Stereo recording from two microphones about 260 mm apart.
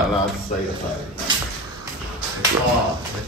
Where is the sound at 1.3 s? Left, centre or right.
Centre.